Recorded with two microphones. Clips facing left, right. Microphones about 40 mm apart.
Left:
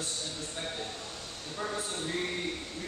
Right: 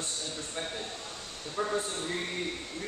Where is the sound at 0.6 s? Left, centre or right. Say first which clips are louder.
Even; centre.